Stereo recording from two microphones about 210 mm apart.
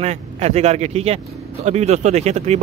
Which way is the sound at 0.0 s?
30° right (ahead or behind).